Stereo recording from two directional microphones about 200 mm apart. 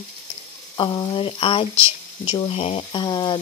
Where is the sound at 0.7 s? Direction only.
25° left (ahead or behind).